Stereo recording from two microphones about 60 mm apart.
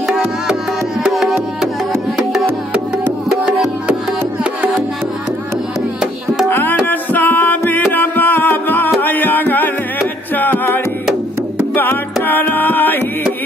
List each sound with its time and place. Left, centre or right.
1.1 s music: centre
6.5 s music: left